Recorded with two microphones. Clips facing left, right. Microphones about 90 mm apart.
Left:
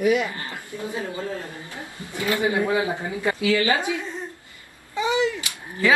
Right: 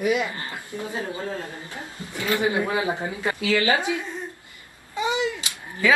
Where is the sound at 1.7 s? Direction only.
15° left (ahead or behind).